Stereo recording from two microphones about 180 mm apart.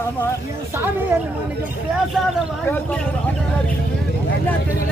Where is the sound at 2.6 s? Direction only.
10° left (ahead or behind).